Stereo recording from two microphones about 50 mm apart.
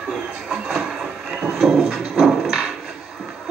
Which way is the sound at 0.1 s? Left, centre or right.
Centre.